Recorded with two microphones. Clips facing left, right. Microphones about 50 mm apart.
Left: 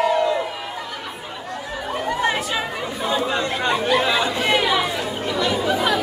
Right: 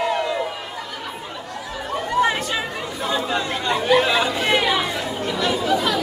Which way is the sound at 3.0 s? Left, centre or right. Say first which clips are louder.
Left 1 dB; centre.